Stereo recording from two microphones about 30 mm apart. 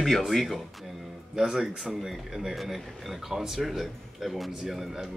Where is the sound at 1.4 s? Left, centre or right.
Right.